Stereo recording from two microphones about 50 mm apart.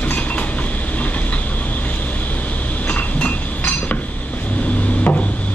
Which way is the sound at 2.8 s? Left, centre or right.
Left.